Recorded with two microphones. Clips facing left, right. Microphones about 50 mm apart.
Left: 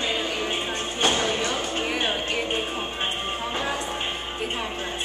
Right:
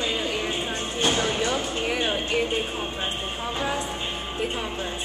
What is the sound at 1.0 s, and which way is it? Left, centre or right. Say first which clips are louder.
Music: left 1 dB; centre.